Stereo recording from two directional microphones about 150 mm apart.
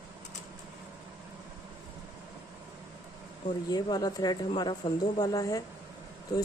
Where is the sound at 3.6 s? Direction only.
25° left (ahead or behind).